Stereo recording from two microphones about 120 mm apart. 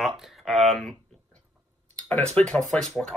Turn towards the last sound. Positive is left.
turn(degrees=5)  # may be behind; listen again after turning